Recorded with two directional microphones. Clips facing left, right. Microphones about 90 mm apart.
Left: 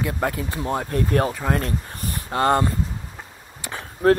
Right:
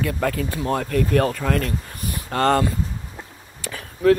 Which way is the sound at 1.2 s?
20° left (ahead or behind).